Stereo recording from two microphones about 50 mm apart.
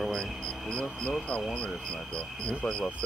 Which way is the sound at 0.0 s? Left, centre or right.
Centre.